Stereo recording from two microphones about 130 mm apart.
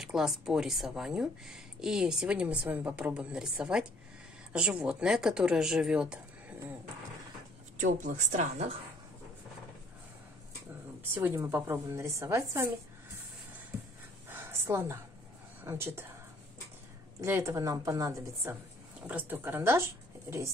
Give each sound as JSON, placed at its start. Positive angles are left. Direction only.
{"t": 0.0, "sound": "speech", "side_deg": -5}
{"t": 7.7, "sound": "a woman's voice", "side_deg": -70}
{"t": 11.1, "sound": "a woman's voice", "side_deg": -20}
{"t": 14.3, "sound": "a sound", "side_deg": -20}
{"t": 15.6, "sound": "a woman's voice", "side_deg": -20}
{"t": 17.2, "sound": "a woman's voice", "side_deg": -20}
{"t": 19.0, "sound": "speech", "side_deg": -15}